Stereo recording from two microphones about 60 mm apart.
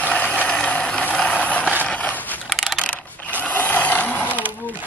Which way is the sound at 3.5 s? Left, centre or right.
Left.